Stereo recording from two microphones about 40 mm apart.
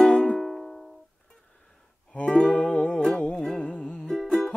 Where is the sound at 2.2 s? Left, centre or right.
Left.